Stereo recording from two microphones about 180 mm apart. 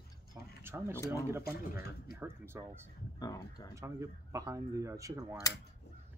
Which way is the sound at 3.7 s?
15° right (ahead or behind).